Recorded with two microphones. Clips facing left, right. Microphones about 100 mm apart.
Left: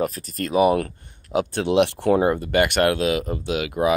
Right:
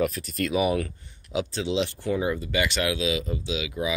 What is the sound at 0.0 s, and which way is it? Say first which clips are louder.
Speech: left 1 dB; 40° left (ahead or behind).